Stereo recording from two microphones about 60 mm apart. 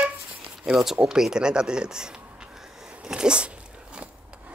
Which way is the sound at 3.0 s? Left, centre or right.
Centre.